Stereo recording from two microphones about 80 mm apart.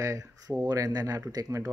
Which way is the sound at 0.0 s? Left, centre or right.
Right.